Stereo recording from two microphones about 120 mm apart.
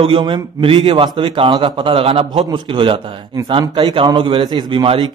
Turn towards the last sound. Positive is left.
turn(degrees=-45)  # may be behind; listen again after turning